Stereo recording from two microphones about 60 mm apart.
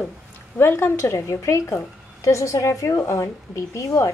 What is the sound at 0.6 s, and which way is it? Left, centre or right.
Speech, left.